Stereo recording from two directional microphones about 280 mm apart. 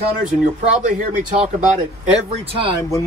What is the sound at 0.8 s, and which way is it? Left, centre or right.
Speech, right.